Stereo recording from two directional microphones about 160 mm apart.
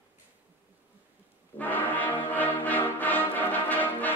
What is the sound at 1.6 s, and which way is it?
Brass instrument, 10° left (ahead or behind).